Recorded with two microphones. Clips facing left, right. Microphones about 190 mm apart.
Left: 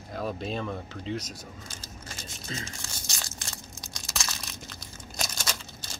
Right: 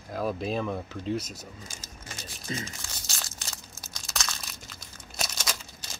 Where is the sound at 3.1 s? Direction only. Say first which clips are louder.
Left 1 dB; centre (ahead or behind).